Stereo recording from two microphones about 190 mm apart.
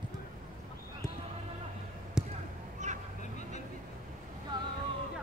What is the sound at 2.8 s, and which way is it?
Vehicle, 40° right (ahead or behind).